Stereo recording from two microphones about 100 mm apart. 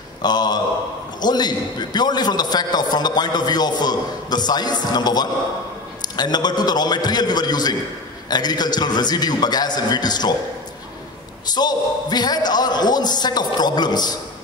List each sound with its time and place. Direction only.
0.2 s a man's voice: 45° left (ahead or behind)
11.5 s a man's voice: 45° left (ahead or behind)